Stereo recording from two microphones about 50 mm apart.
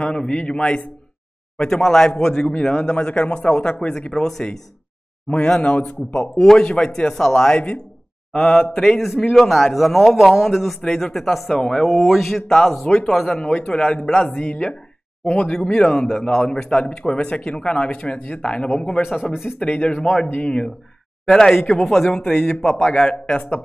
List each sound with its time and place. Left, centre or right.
0.0 s speech: centre
1.6 s a man's voice: centre
5.6 s speech: left
6.4 s a man's voice: centre
8.7 s a man's voice: centre
10.8 s a man's voice: centre
21.3 s a man's voice: centre